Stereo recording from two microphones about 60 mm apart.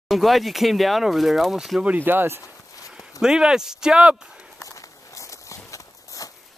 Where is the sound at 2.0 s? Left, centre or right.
Right.